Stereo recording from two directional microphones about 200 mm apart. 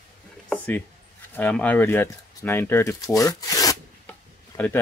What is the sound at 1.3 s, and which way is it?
Speech, 10° left (ahead or behind).